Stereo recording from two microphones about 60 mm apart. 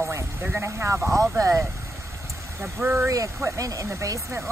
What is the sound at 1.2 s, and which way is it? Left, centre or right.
Speech, right.